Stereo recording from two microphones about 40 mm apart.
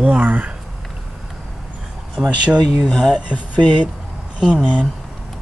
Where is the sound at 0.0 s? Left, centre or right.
Right.